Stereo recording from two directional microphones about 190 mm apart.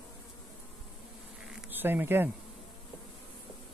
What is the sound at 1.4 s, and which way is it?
Insect, 5° right (ahead or behind).